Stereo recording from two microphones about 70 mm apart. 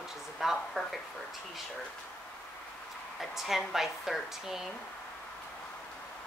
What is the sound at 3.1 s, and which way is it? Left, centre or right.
A woman's voice, centre.